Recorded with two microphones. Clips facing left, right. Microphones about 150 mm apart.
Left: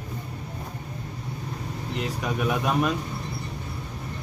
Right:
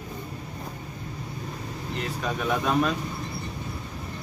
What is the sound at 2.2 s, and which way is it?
Speech, 10° left (ahead or behind).